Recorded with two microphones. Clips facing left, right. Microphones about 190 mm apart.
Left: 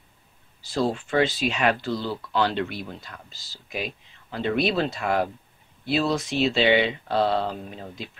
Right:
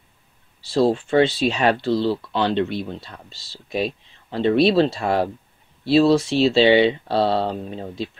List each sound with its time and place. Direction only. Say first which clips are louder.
0.7 s speech: right 7 dB; 30° right (ahead or behind)